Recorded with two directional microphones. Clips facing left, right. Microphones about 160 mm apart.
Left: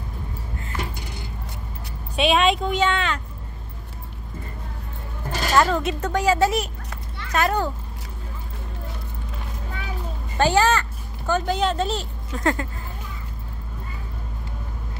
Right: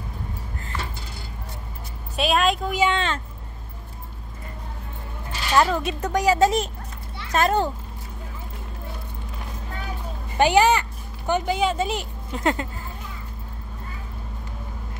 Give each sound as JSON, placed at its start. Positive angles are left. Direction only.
{"t": 0.7, "sound": "a sound", "side_deg": 15}
{"t": 2.1, "sound": "speech", "side_deg": 0}
{"t": 2.9, "sound": "a child's voice", "side_deg": -25}
{"t": 5.3, "sound": "a sound", "side_deg": 40}
{"t": 5.9, "sound": "a woman's voice", "side_deg": -15}
{"t": 10.3, "sound": "a child's voice", "side_deg": -15}